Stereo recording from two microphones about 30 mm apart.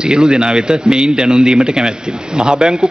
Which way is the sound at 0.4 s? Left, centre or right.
Right.